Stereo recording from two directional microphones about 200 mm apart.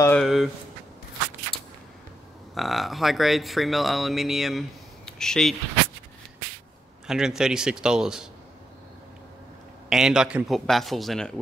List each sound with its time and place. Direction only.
0.0 s a sound: 5° left (ahead or behind)
2.5 s speech: centre (ahead or behind)
7.1 s speech: 5° right (ahead or behind)
9.8 s speech: 5° right (ahead or behind)